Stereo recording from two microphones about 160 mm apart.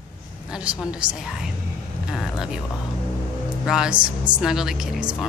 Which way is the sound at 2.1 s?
5° right (ahead or behind).